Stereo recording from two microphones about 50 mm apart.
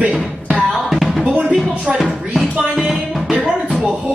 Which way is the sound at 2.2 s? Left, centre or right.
Centre.